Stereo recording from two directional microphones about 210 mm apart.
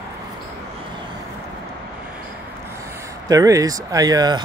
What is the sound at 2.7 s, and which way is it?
Speech, 10° right (ahead or behind).